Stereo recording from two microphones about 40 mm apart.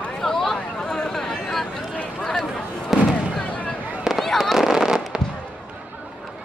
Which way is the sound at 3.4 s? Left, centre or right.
Left.